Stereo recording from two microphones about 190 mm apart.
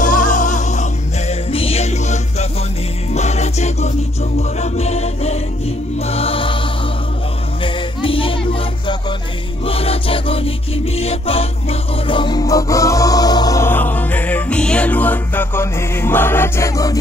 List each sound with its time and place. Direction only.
0.0 s music: 40° left (ahead or behind)
7.6 s music: 25° left (ahead or behind)
9.7 s music: 30° left (ahead or behind)